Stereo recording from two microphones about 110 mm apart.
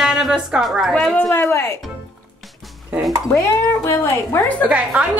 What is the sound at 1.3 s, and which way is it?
Speech, 25° left (ahead or behind).